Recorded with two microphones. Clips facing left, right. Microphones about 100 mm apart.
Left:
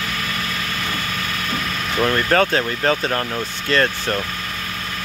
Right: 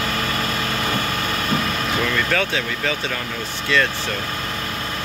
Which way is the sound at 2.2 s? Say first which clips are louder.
Left 4 dB; 45° left (ahead or behind).